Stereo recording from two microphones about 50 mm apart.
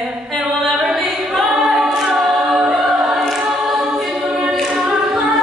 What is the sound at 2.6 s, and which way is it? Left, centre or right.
Choir, centre.